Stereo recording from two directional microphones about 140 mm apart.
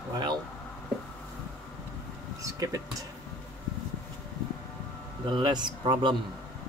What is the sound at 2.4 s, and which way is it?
Speech, 25° right (ahead or behind).